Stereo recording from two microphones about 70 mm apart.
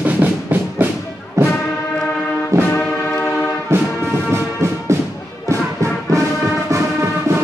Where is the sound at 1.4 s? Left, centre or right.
Right.